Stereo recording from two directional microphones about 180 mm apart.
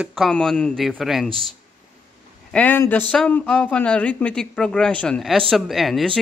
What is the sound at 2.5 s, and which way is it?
A man's voice, 10° left (ahead or behind).